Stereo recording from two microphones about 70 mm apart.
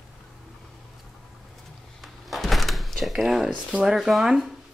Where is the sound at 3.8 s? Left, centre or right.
Centre.